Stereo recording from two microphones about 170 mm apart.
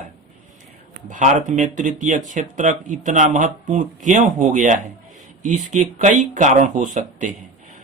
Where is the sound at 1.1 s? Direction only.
50° right (ahead or behind).